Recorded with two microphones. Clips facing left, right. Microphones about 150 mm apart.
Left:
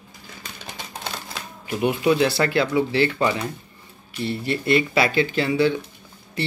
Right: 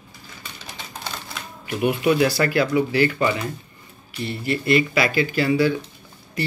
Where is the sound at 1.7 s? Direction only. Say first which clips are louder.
Even; 25° left (ahead or behind).